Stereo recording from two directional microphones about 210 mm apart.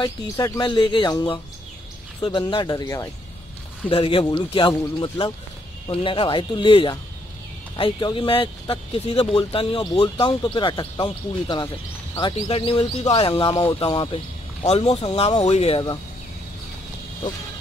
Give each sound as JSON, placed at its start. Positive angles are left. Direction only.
{"t": 0.0, "sound": "speech", "side_deg": 20}
{"t": 3.9, "sound": "speech", "side_deg": 25}
{"t": 14.6, "sound": "speech", "side_deg": 30}